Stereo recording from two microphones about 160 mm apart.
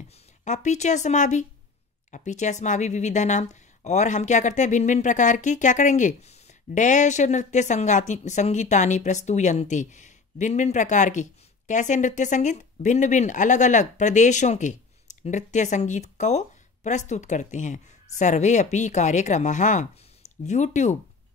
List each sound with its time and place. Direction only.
0.5 s speech: 45° left (ahead or behind)